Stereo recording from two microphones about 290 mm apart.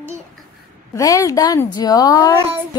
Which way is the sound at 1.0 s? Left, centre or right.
Centre.